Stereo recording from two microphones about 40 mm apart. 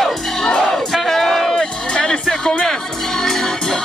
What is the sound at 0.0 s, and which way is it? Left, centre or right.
Crowd, centre.